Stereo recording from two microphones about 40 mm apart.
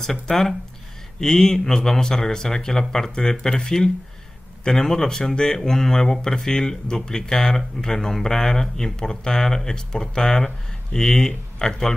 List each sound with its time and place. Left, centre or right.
0.0 s speech: centre